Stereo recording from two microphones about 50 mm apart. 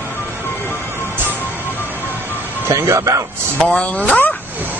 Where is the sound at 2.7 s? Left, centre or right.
Right.